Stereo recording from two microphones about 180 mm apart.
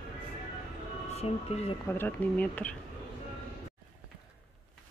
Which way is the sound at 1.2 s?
35° left (ahead or behind).